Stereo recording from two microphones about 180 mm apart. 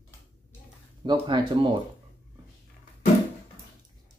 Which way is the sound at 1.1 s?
25° right (ahead or behind).